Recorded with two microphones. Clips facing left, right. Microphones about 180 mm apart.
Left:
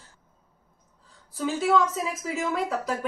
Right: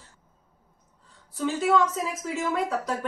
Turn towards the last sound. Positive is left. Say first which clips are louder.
# even
turn(degrees=5)  # may be behind; listen again after turning